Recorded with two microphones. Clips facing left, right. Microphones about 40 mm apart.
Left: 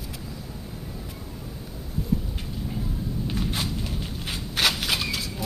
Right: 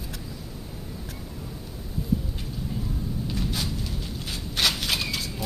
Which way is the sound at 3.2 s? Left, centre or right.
Left.